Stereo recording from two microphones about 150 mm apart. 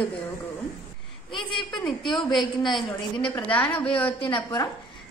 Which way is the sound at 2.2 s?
30° left (ahead or behind).